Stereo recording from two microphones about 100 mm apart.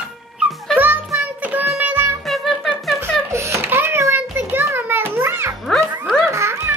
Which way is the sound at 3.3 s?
25° right (ahead or behind).